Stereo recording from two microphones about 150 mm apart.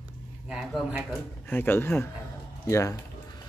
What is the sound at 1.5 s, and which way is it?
Speech, 15° left (ahead or behind).